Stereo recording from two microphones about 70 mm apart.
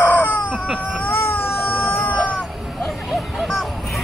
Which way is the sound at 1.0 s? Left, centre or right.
Left.